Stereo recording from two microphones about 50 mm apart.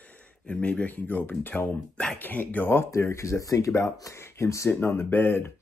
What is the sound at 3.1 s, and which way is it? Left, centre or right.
Speech, left.